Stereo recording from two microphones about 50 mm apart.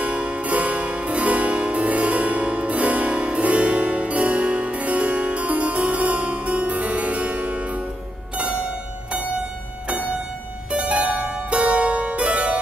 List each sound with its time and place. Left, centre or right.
0.0 s music: right
10.7 s harpsichord: right